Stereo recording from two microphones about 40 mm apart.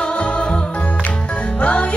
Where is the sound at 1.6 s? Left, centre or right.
Left.